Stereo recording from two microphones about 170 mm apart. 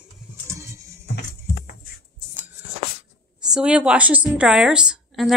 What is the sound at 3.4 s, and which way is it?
A woman's voice, 5° right (ahead or behind).